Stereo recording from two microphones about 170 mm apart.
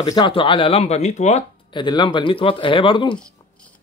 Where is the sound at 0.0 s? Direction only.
25° left (ahead or behind); by 1.4 s 40° left (ahead or behind).